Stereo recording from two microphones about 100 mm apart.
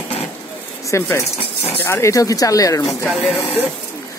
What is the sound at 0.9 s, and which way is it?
Speech, 30° left (ahead or behind).